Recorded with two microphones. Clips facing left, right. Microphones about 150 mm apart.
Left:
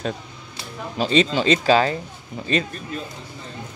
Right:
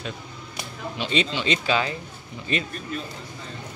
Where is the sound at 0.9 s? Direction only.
40° left (ahead or behind).